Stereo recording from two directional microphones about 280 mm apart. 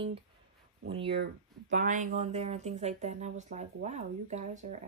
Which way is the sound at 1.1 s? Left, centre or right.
Right.